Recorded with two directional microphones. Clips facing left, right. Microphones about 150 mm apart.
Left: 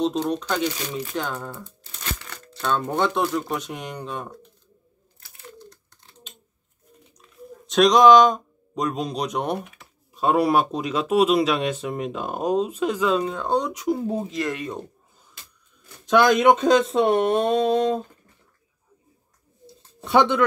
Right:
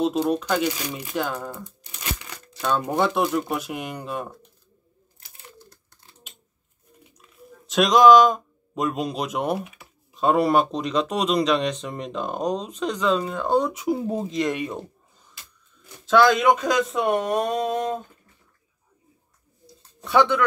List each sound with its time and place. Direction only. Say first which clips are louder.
0.0 s speech: right 1 dB; 5° right (ahead or behind)
7.2 s speech: left 6 dB; centre (ahead or behind)
16.1 s speech: left 1 dB; 20° left (ahead or behind)
19.6 s a sound: left 2 dB; 20° left (ahead or behind)